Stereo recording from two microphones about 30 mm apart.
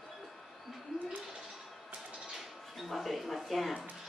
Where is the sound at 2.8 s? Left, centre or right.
Centre.